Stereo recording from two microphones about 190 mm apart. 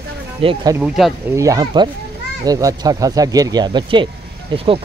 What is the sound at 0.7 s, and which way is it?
Speech, centre (ahead or behind).